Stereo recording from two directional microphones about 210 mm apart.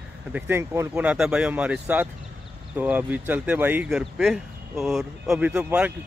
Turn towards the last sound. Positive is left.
turn(degrees=-5)  # may be behind; listen again after turning